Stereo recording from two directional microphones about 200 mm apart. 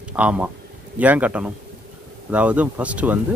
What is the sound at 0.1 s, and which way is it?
Speech, 5° right (ahead or behind).